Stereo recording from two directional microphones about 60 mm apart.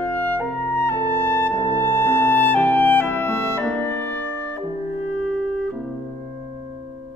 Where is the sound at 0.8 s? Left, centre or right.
Left.